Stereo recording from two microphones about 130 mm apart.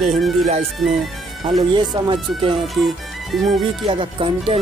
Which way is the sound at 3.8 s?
45° right (ahead or behind).